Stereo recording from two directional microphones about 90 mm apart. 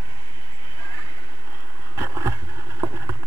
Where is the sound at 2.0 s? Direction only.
30° right (ahead or behind).